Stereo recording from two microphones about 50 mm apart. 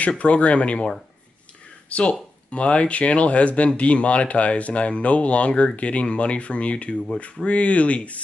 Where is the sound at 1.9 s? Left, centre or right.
Left.